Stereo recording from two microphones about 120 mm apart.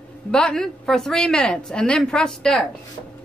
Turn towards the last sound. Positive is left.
turn(degrees=5)  # may be behind; listen again after turning